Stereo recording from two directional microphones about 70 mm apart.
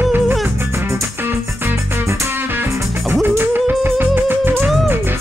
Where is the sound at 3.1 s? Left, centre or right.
Right.